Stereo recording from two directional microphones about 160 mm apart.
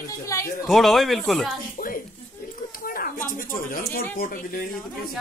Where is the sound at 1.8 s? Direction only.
70° left (ahead or behind).